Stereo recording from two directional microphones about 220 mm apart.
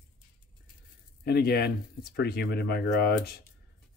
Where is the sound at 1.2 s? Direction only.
45° left (ahead or behind).